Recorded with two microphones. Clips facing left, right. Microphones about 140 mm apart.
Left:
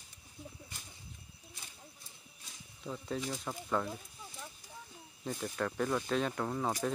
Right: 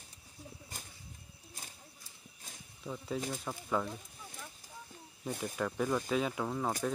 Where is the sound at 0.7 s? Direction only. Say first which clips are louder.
Right 3 dB; 45° right (ahead or behind).